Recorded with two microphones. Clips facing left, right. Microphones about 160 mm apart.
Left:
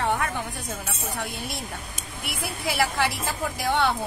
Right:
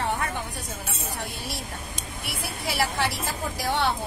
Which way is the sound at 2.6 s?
50° left (ahead or behind).